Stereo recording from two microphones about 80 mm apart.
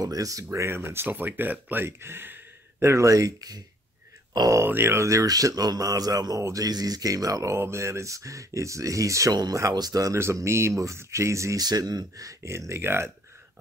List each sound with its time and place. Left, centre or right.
0.0 s speech: right
4.6 s a man's voice: right
9.3 s a man's voice: right
10.1 s speech: right
11.6 s speech: right